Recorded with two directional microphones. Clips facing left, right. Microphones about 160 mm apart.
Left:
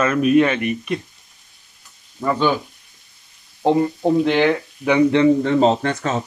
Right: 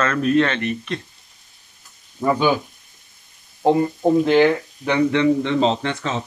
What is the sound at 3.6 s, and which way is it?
Speech, 5° right (ahead or behind).